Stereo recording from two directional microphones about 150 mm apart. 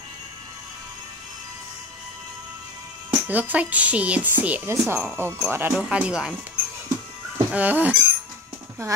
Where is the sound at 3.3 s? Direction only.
10° right (ahead or behind).